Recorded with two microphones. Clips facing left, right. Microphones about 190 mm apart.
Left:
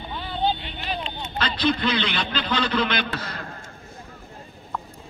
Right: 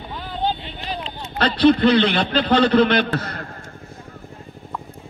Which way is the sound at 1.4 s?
60° right (ahead or behind).